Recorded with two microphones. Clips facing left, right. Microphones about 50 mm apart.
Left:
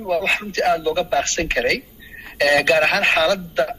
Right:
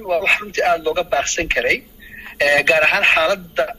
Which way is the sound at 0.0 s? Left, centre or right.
Right.